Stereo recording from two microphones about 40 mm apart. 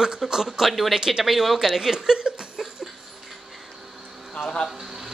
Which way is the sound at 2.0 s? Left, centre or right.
Right.